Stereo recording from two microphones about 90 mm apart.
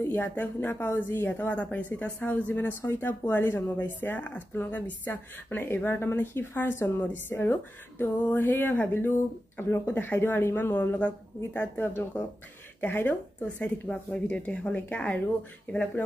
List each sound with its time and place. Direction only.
0.0 s speech: 20° left (ahead or behind)